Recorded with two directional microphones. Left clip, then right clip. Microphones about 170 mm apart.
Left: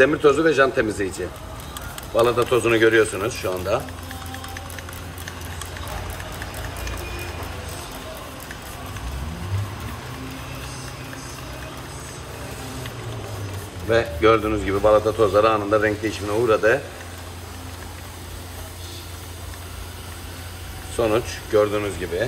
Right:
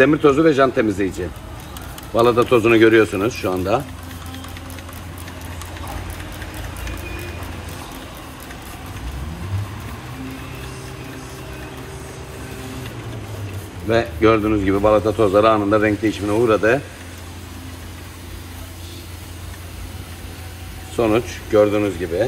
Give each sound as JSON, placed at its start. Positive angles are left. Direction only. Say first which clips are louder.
{"t": 0.0, "sound": "a man's voice", "louder": "right 2 dB", "side_deg": -35}
{"t": 2.1, "sound": "a man's voice", "louder": "right 4 dB", "side_deg": -30}
{"t": 13.8, "sound": "a man's voice", "louder": "right 1 dB", "side_deg": -35}
{"t": 20.9, "sound": "a man's voice", "louder": "right 3 dB", "side_deg": -35}